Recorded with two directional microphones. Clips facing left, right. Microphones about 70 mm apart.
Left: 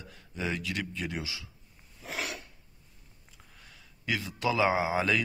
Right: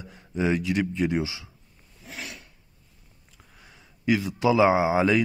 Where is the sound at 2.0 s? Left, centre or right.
Left.